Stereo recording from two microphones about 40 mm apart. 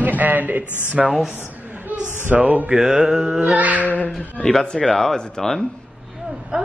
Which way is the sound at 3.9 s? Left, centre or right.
Left.